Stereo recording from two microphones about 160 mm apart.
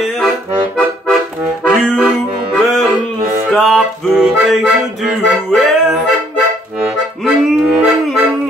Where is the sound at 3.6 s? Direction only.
5° right (ahead or behind).